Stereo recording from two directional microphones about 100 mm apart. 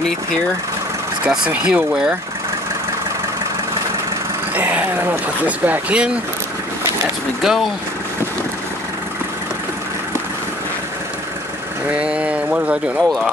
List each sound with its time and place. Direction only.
1.2 s speech: 10° right (ahead or behind)
4.6 s speech: 15° right (ahead or behind)
7.4 s speech: centre (ahead or behind)
11.9 s speech: 10° right (ahead or behind)
12.9 s speech: 5° right (ahead or behind)